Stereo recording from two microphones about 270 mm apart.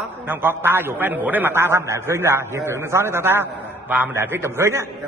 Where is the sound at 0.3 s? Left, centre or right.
Centre.